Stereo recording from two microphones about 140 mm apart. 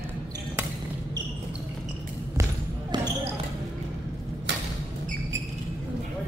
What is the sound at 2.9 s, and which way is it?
Basketball bounce, 30° right (ahead or behind).